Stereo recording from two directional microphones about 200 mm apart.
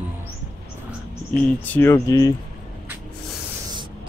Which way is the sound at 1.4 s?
10° left (ahead or behind).